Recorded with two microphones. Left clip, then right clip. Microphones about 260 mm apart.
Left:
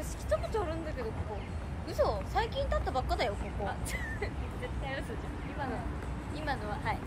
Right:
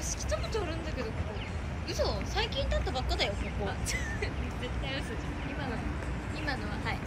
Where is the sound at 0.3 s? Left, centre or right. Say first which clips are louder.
Left 3 dB; left.